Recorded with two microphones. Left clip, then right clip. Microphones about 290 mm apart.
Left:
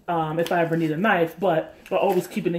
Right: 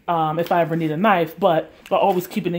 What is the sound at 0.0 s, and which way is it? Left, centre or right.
Speech, right.